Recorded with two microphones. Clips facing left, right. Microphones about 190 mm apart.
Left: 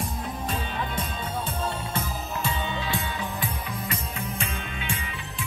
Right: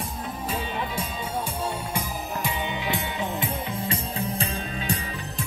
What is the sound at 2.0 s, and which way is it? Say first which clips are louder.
Music: right 1 dB; 15° right (ahead or behind).